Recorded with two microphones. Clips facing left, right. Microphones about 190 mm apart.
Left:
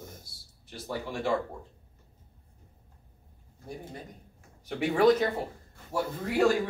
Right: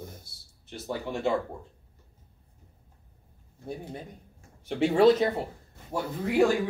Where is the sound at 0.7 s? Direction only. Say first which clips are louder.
Right 2 dB; 25° right (ahead or behind).